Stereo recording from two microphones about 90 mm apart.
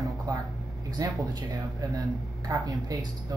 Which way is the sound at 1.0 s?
40° right (ahead or behind).